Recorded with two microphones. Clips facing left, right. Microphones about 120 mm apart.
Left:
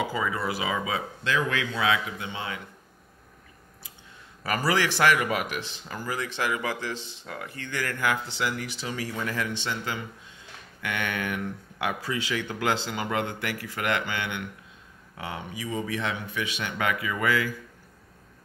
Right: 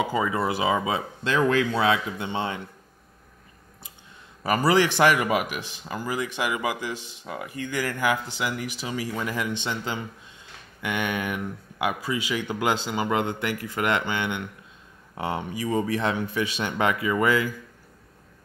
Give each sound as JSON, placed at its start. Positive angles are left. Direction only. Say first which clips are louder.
{"t": 0.1, "sound": "speech", "louder": "right 4 dB", "side_deg": -25}
{"t": 4.4, "sound": "speech", "louder": "right 5 dB", "side_deg": -20}
{"t": 15.1, "sound": "speech", "louder": "right 7 dB", "side_deg": -35}